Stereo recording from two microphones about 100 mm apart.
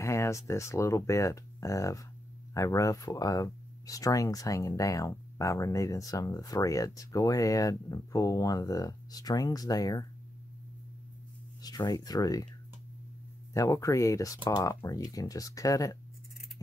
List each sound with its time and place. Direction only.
0.0 s speech: 30° left (ahead or behind)
11.6 s speech: 40° left (ahead or behind)
13.5 s speech: 30° left (ahead or behind)